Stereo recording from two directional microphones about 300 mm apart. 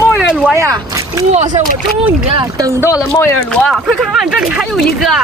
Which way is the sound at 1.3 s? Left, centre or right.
Right.